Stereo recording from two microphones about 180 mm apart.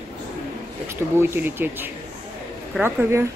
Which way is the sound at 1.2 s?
10° right (ahead or behind).